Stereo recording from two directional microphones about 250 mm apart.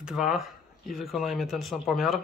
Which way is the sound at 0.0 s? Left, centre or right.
Centre.